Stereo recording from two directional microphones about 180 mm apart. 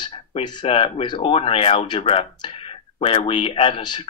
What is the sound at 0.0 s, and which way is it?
Speech, 25° left (ahead or behind).